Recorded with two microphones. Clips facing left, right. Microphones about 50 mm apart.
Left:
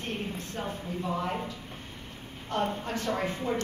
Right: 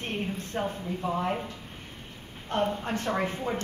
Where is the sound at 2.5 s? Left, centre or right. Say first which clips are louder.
Right 2 dB; right.